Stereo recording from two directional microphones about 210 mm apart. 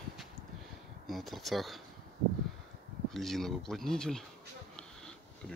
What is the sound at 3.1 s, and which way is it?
Speech, centre (ahead or behind).